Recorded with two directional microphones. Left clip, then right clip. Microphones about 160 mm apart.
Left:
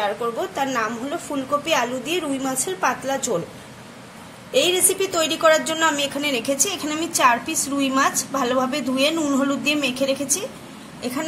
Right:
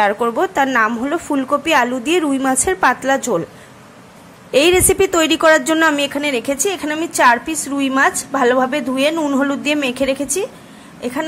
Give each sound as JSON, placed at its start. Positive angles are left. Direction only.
{"t": 0.0, "sound": "speech", "side_deg": -35}
{"t": 4.5, "sound": "speech", "side_deg": -35}
{"t": 6.0, "sound": "a woman's voice", "side_deg": -15}